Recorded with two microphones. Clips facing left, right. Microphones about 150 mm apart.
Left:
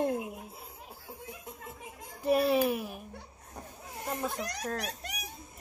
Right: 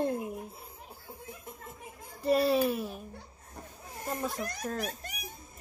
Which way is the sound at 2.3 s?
5° left (ahead or behind).